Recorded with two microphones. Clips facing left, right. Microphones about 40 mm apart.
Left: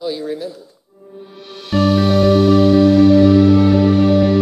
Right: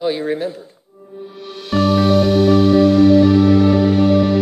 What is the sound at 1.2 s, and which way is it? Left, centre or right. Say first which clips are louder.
Music: right 3 dB; centre.